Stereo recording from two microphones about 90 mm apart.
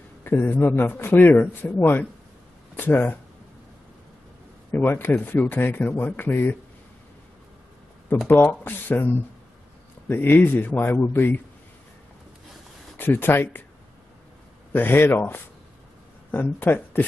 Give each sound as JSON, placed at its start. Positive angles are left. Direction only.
{"t": 0.2, "sound": "a man's voice", "side_deg": 20}
{"t": 4.6, "sound": "a man's voice", "side_deg": 20}
{"t": 8.3, "sound": "a man's voice", "side_deg": 20}
{"t": 12.9, "sound": "speech", "side_deg": 25}
{"t": 14.7, "sound": "a man's voice", "side_deg": 20}